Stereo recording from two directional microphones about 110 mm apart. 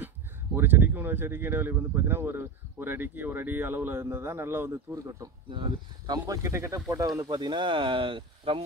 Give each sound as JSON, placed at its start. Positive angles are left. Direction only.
{"t": 0.6, "sound": "speech", "side_deg": -20}
{"t": 5.5, "sound": "speech", "side_deg": -45}
{"t": 7.2, "sound": "speech", "side_deg": -45}